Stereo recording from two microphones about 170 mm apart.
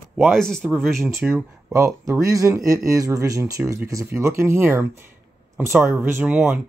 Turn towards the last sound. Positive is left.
turn(degrees=-5)  # may be behind; listen again after turning